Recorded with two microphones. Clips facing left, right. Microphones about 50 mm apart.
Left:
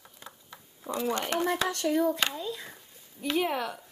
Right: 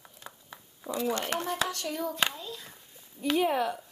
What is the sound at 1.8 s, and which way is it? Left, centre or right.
Hands, left.